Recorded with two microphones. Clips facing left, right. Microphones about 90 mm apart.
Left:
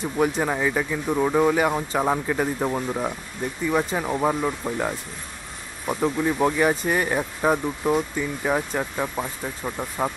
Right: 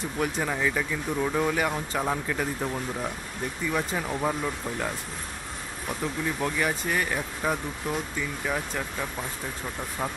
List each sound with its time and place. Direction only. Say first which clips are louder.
0.2 s speech: left 5 dB; 20° left (ahead or behind)